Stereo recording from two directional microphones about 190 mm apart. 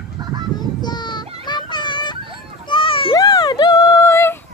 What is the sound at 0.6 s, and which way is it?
Child singing, 20° left (ahead or behind).